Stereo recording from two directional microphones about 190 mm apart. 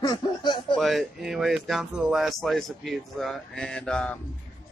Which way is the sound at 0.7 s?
Centre (ahead or behind).